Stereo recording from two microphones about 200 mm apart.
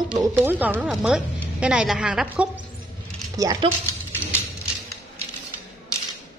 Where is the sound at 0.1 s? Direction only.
20° right (ahead or behind).